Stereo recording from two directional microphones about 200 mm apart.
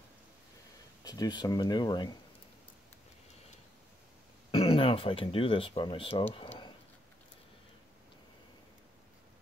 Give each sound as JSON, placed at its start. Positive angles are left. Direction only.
{"t": 1.0, "sound": "speech", "side_deg": 20}
{"t": 4.5, "sound": "speech", "side_deg": 30}
{"t": 6.3, "sound": "a sound", "side_deg": 25}